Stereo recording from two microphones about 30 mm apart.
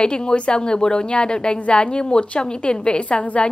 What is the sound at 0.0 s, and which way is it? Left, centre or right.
A woman's voice, left.